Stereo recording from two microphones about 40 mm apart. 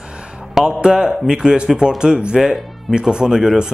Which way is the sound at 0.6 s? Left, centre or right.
Centre.